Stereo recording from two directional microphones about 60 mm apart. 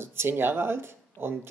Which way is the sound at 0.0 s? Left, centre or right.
Right.